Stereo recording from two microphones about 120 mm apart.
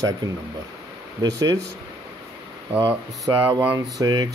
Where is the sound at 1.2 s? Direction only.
30° right (ahead or behind).